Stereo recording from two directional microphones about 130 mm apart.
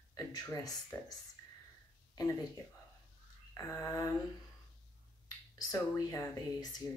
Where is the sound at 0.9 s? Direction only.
20° left (ahead or behind).